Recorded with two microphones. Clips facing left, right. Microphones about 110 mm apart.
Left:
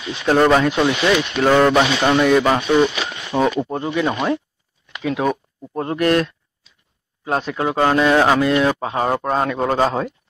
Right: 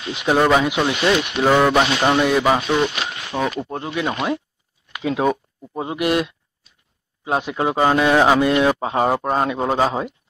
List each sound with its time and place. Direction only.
0.1 s speech: 15° right (ahead or behind)
5.0 s speech: 25° right (ahead or behind)
5.8 s speech: 10° right (ahead or behind)
9.1 s speech: 5° right (ahead or behind)